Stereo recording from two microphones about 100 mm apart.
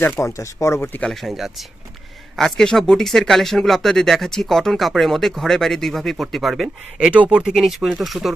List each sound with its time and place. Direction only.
0.0 s speech: 25° left (ahead or behind)
1.0 s speech: centre (ahead or behind)
7.1 s speech: 10° right (ahead or behind)